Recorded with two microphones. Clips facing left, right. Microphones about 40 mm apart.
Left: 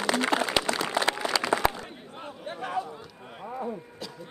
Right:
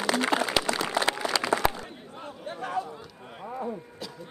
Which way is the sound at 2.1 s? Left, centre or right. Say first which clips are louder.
Even; left.